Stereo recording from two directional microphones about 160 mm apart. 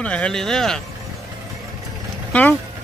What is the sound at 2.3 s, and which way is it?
Speech, 10° left (ahead or behind).